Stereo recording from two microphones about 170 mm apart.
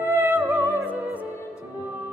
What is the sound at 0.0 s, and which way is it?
Music, 10° right (ahead or behind).